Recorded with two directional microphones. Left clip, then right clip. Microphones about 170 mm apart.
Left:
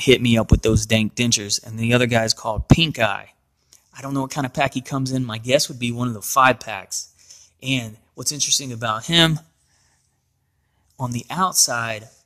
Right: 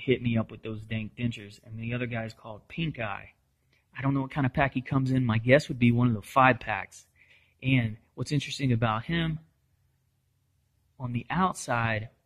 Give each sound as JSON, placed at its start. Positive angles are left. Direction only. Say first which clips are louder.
{"t": 0.0, "sound": "speech", "louder": "left 12 dB", "side_deg": 40}
{"t": 8.4, "sound": "speech", "louder": "left 10 dB", "side_deg": 65}
{"t": 8.7, "sound": "speech", "louder": "left 5 dB", "side_deg": 15}
{"t": 9.1, "sound": "speech", "louder": "left 16 dB", "side_deg": 40}
{"t": 11.0, "sound": "speech", "louder": "left 7 dB", "side_deg": 25}